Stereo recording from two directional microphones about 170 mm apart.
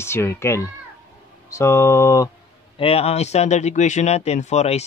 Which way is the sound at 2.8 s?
35° left (ahead or behind).